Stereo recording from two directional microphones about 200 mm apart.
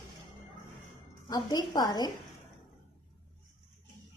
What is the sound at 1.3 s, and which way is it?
Speech, 20° left (ahead or behind).